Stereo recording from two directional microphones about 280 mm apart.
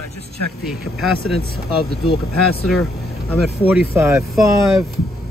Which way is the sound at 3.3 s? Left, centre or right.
Centre.